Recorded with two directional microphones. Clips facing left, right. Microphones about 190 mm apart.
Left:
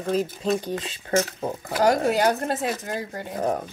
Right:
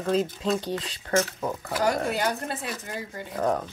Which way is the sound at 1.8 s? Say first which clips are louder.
Left 6 dB; 40° left (ahead or behind).